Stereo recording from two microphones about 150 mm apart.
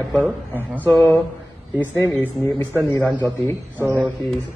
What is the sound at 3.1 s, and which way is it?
Speech, 10° left (ahead or behind).